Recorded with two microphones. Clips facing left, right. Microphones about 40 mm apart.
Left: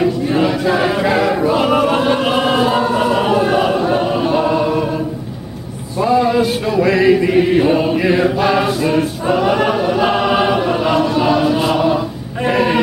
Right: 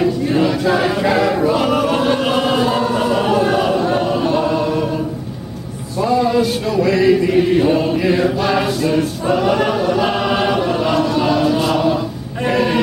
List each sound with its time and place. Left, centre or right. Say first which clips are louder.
0.0 s choir: left 1 dB; centre
5.9 s chant: left 2 dB; centre
12.4 s a sound: left 2 dB; centre